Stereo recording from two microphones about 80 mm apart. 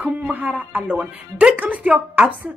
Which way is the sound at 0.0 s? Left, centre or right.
Centre.